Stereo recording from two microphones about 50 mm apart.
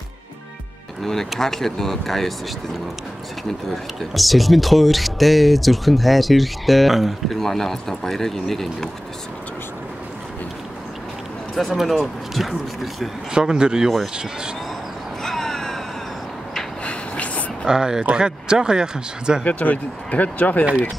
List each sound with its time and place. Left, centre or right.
1.4 s speech: centre
3.7 s speech: centre
11.5 s speech: centre
13.3 s speech: centre
15.2 s crow: centre
16.8 s a sound: left
17.6 s speech: centre
19.4 s speech: left